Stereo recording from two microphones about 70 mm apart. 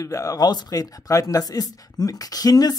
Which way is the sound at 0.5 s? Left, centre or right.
Left.